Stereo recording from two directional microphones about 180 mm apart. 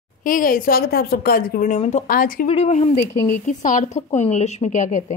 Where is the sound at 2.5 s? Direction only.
40° left (ahead or behind).